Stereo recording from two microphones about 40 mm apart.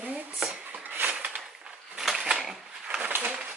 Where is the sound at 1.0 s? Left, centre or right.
Right.